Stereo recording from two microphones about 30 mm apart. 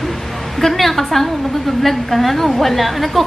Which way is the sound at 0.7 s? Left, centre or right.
Centre.